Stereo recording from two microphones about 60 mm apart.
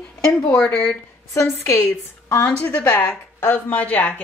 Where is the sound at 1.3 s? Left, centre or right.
Left.